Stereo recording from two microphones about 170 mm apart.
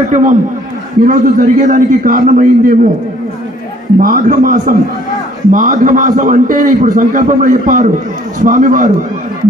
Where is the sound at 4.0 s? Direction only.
55° right (ahead or behind).